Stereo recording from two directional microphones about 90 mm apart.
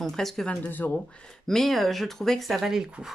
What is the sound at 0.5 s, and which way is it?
Speech, 20° left (ahead or behind).